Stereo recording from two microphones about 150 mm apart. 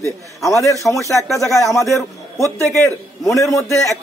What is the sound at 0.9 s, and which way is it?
Speech, centre (ahead or behind).